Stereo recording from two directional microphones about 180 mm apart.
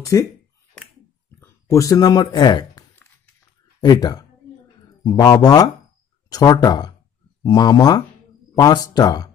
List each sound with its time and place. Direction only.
0.0 s speech: 15° left (ahead or behind)
1.4 s speech: 15° left (ahead or behind)
3.0 s a sound: 5° left (ahead or behind)
3.8 s speech: 20° left (ahead or behind)